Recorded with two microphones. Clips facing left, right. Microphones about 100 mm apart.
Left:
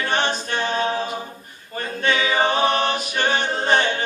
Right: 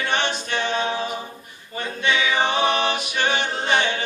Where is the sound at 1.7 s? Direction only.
40° left (ahead or behind).